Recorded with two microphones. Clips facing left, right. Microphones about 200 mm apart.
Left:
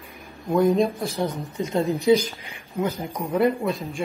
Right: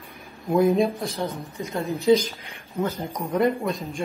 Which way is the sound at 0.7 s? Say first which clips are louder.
Even; centre (ahead or behind).